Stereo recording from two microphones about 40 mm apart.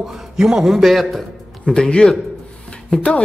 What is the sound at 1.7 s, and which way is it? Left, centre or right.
Speech, centre.